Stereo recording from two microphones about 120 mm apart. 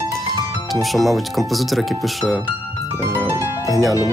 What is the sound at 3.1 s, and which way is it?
Music, 15° right (ahead or behind).